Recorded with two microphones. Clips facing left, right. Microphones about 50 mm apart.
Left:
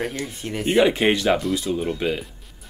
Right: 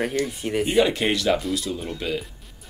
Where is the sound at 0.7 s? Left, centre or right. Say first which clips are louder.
Left 4 dB; centre.